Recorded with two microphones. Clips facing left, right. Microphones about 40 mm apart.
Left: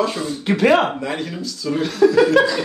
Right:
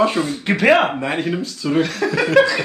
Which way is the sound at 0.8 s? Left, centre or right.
Right.